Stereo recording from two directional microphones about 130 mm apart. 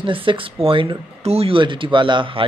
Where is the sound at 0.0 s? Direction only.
40° right (ahead or behind).